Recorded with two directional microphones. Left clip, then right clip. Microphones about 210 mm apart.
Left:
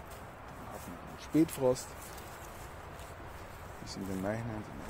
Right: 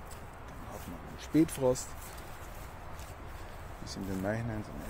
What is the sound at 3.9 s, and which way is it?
Speech, 10° right (ahead or behind).